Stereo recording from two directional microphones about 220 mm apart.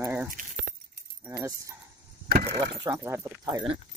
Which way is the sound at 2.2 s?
40° right (ahead or behind).